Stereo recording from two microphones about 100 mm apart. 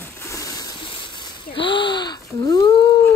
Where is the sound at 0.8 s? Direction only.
55° left (ahead or behind).